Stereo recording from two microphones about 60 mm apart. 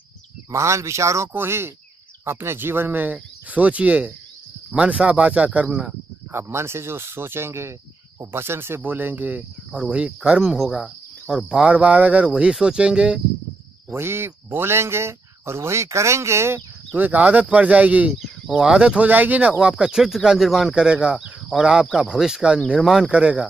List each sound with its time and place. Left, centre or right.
0.5 s speech: right; by 5.9 s centre
6.3 s speech: right; by 10.4 s centre
10.4 s cricket: centre
11.7 s speech: right
12.3 s speech: centre
13.8 s speech: right
16.9 s speech: right
18.2 s speech: centre
19.0 s speech: right
19.8 s speech: centre
20.7 s speech: centre